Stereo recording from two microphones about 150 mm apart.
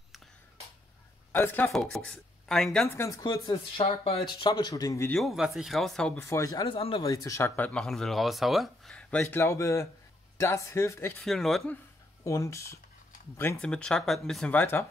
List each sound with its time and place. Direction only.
1.3 s speech: 15° left (ahead or behind)
1.7 s speech: 5° left (ahead or behind)
2.9 s speech: 20° left (ahead or behind)
3.5 s speech: 35° left (ahead or behind); by 5.1 s 20° left (ahead or behind)
5.1 s speech: centre (ahead or behind)
6.1 s speech: 20° left (ahead or behind)
11.2 s speech: centre (ahead or behind)
12.3 s speech: 20° left (ahead or behind)
13.6 s speech: 5° left (ahead or behind)